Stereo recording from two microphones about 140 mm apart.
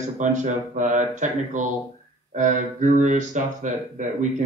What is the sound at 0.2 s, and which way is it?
Speech, 60° right (ahead or behind).